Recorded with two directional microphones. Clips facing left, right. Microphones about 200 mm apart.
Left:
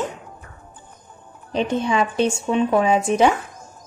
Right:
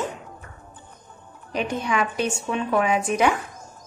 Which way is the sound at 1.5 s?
25° left (ahead or behind).